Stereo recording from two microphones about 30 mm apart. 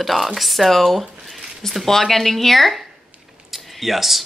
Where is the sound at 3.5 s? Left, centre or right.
Centre.